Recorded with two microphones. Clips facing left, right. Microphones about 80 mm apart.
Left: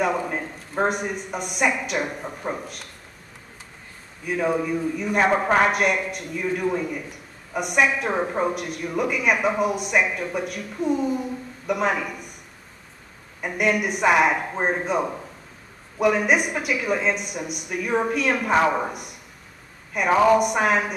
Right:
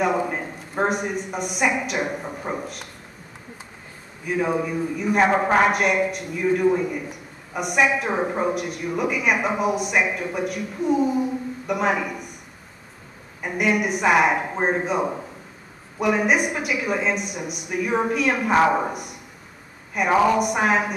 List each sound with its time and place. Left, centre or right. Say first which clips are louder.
0.0 s a man's voice: right 1 dB; centre
4.3 s a man's voice: even; centre
13.4 s a man's voice: right 1 dB; centre